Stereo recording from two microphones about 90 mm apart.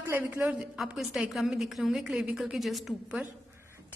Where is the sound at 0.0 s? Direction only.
25° right (ahead or behind).